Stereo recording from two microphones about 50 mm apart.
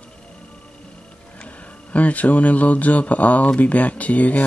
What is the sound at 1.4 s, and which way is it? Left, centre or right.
Speech, left.